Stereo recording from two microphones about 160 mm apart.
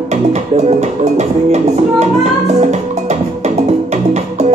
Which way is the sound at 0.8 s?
45° right (ahead or behind).